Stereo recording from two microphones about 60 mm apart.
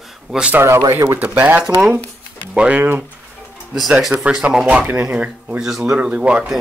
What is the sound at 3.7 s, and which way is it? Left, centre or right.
Speech, centre.